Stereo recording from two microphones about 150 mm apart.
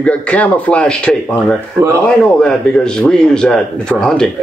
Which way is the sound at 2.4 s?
5° left (ahead or behind).